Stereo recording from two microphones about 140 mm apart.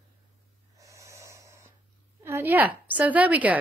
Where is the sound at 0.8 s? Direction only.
20° right (ahead or behind).